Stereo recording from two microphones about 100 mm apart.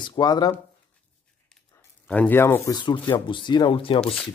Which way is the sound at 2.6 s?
50° left (ahead or behind).